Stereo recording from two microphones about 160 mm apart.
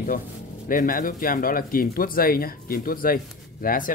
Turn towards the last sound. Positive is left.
turn(degrees=60)  # may be behind; listen again after turning